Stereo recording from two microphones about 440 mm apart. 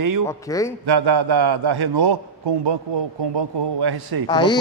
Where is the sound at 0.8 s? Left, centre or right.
Right.